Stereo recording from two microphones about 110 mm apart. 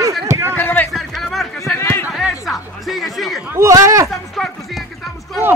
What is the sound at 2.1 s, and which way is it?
Music, centre (ahead or behind).